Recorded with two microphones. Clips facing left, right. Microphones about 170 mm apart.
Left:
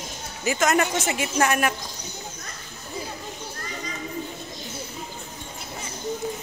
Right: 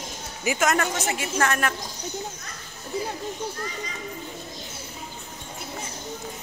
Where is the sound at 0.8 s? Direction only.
20° left (ahead or behind).